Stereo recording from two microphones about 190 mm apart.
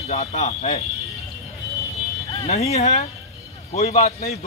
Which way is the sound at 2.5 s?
35° left (ahead or behind).